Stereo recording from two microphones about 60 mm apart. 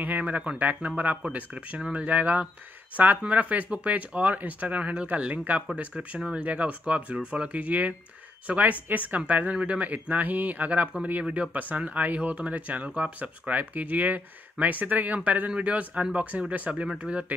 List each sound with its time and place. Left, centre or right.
0.0 s speech: right